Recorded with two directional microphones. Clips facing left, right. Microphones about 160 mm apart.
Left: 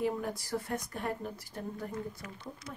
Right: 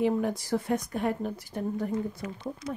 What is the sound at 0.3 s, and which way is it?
A woman's voice, 20° right (ahead or behind).